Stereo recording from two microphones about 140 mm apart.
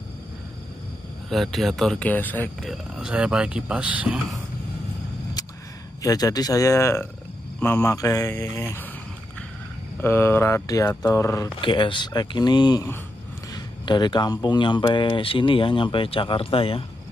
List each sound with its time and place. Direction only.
1.3 s a man's voice: centre (ahead or behind)
2.6 s speech: 5° right (ahead or behind)
6.0 s speech: 25° left (ahead or behind)
7.6 s mantra: 15° left (ahead or behind)
10.0 s speech: 20° left (ahead or behind)
11.6 s speech: 35° left (ahead or behind)